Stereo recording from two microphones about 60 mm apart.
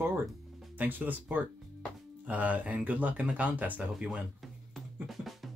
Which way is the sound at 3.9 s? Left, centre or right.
Centre.